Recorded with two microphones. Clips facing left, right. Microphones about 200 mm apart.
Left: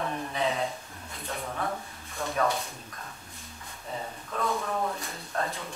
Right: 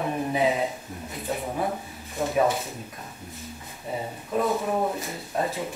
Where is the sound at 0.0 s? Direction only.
15° right (ahead or behind).